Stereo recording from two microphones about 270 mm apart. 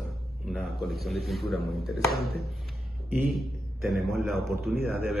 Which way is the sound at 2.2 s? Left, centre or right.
Right.